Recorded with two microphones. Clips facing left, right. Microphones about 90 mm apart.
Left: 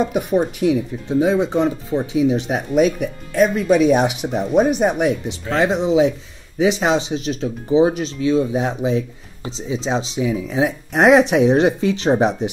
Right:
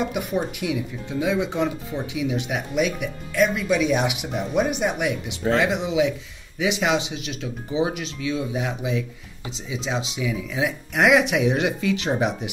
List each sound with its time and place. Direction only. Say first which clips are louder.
0.0 s speech: left 7 dB; 35° left (ahead or behind)